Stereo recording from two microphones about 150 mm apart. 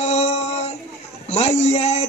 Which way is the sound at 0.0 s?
45° left (ahead or behind).